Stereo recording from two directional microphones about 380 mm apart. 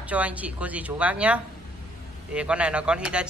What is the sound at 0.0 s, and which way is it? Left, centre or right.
Speech, centre.